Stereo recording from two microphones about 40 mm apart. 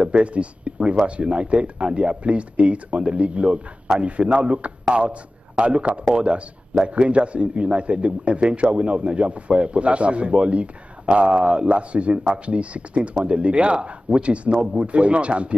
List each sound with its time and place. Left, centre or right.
0.0 s a man's voice: right
14.6 s a man's voice: centre
14.9 s a man's voice: right